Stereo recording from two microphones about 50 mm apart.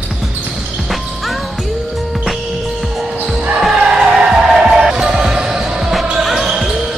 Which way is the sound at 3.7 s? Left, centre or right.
Centre.